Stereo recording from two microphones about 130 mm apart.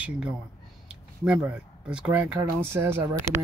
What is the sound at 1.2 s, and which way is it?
Speech, 10° right (ahead or behind).